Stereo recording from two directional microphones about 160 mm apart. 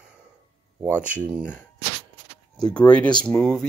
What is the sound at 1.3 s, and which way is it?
Speech, 5° right (ahead or behind).